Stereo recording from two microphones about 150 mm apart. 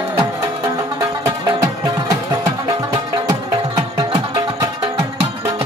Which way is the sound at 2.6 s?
30° right (ahead or behind).